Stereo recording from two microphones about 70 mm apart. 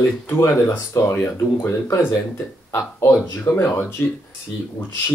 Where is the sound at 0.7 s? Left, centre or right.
Left.